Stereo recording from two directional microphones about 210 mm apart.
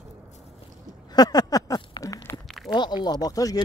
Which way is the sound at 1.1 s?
20° left (ahead or behind).